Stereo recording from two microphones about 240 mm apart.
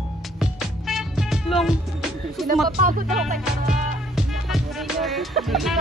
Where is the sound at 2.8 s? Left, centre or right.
Right.